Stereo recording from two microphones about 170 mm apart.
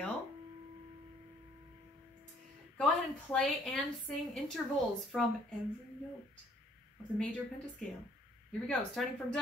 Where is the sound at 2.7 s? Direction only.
5° left (ahead or behind).